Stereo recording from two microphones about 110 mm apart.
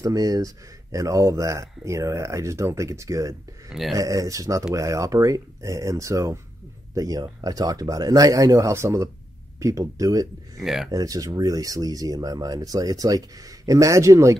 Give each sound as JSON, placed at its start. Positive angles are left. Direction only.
{"t": 0.0, "sound": "speech", "side_deg": -35}
{"t": 10.6, "sound": "speech", "side_deg": -5}
{"t": 10.9, "sound": "speech", "side_deg": -35}